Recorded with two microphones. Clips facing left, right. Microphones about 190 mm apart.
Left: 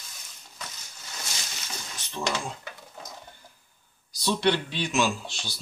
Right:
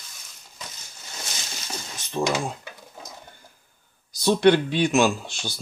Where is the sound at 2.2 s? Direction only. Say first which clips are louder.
Right 6 dB; 50° right (ahead or behind).